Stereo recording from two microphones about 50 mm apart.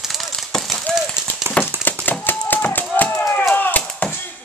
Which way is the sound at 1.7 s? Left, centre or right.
Right.